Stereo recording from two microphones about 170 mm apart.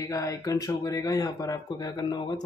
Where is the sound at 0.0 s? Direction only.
20° left (ahead or behind).